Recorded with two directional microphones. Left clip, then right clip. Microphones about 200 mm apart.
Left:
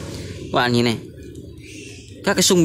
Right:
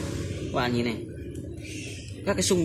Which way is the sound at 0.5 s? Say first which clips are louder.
Left 9 dB; 55° left (ahead or behind).